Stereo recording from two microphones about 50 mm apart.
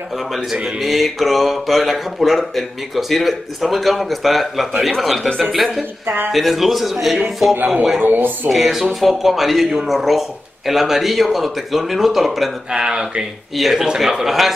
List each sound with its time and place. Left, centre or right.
0.5 s mantra: centre
6.0 s a woman's voice: right
6.3 s mantra: centre
8.0 s a woman's voice: right
8.5 s mantra: centre
12.7 s speech: centre
13.6 s mantra: centre